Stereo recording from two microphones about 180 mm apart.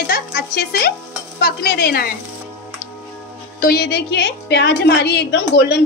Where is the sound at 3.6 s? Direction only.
60° left (ahead or behind).